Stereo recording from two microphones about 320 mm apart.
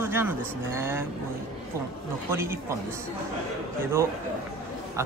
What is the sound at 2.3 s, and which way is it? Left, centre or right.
Speech, centre.